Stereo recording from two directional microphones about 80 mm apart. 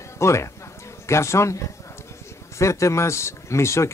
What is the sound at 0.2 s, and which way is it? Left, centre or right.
Speech, left.